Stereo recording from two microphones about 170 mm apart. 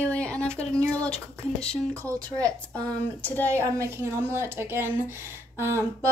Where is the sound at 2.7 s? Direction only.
10° left (ahead or behind).